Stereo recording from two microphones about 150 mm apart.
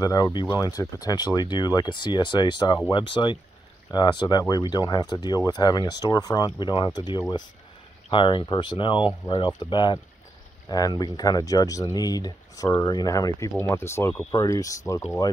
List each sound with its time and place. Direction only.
0.0 s speech: 25° left (ahead or behind)